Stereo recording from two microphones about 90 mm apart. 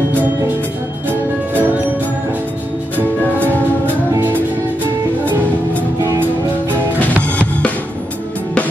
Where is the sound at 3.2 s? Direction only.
20° left (ahead or behind).